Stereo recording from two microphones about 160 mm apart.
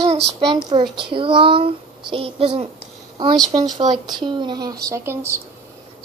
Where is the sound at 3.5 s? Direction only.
25° right (ahead or behind).